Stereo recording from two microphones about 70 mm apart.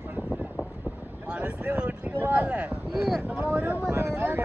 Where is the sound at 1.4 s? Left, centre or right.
Right.